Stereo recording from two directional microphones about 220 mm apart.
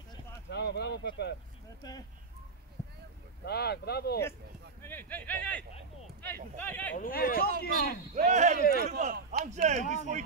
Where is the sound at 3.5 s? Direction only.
45° left (ahead or behind).